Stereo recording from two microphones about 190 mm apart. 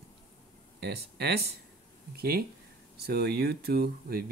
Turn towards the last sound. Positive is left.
turn(degrees=-55)  # may be behind; listen again after turning